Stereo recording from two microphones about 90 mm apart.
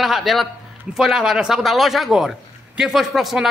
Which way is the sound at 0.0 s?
Centre (ahead or behind).